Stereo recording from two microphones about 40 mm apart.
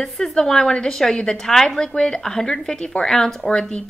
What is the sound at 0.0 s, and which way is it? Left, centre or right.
Speech, centre.